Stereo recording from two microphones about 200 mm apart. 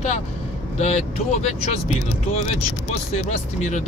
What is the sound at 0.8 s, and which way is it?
Speech, 30° left (ahead or behind).